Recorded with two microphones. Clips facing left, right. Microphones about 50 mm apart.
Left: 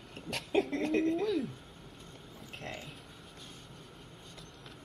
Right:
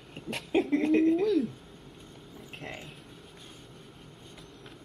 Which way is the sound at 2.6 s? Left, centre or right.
Centre.